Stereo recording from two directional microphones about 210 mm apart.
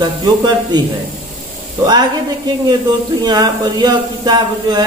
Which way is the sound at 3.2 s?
20° right (ahead or behind).